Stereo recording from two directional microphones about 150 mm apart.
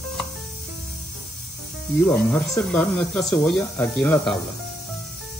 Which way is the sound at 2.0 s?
15° left (ahead or behind).